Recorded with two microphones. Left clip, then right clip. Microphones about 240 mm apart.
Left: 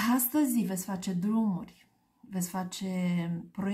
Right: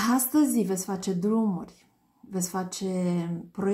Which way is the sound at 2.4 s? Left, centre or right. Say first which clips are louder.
Right 5 dB; left.